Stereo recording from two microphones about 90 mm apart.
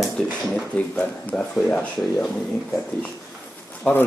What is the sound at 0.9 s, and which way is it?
Speech, 15° left (ahead or behind).